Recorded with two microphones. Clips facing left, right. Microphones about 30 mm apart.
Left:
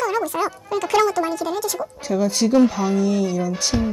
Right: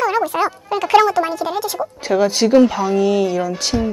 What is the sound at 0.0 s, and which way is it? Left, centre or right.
Speech, right.